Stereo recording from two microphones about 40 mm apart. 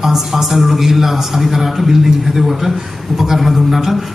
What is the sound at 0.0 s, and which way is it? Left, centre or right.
Speech, centre.